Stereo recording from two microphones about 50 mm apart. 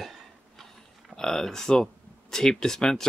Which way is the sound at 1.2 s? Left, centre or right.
Centre.